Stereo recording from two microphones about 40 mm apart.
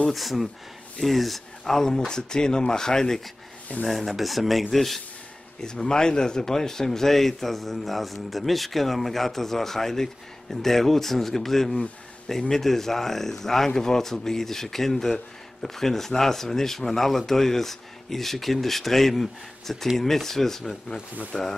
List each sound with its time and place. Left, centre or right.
0.1 s speech: centre
3.8 s speech: centre
5.6 s speech: centre